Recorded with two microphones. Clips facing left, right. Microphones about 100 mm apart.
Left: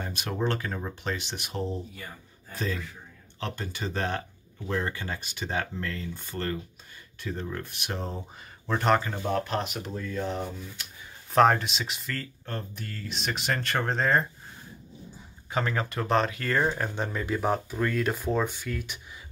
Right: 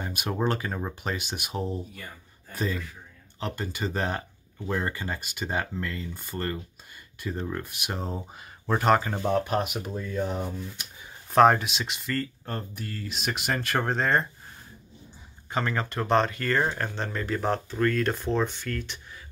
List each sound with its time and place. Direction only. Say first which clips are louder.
0.4 s speech: right 1 dB; 10° right (ahead or behind)
9.0 s speech: right 3 dB; 20° right (ahead or behind); by 14.2 s centre (ahead or behind)
15.5 s speech: even; centre (ahead or behind)